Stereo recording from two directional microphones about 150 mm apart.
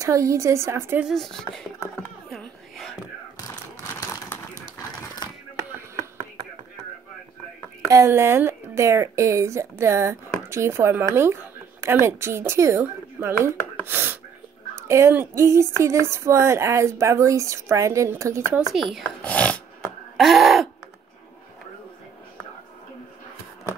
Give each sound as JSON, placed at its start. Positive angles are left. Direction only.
{"t": 0.0, "sound": "speech", "side_deg": -20}
{"t": 1.0, "sound": "speech", "side_deg": 0}
{"t": 2.2, "sound": "a sound", "side_deg": 0}
{"t": 3.9, "sound": "crumpling", "side_deg": 20}
{"t": 7.9, "sound": "speech", "side_deg": -20}
{"t": 13.8, "sound": "gasp", "side_deg": -15}
{"t": 14.9, "sound": "speech", "side_deg": -20}
{"t": 18.7, "sound": "speech", "side_deg": 0}
{"t": 20.2, "sound": "throat clearing", "side_deg": 0}